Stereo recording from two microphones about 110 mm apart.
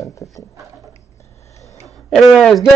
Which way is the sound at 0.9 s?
30° left (ahead or behind).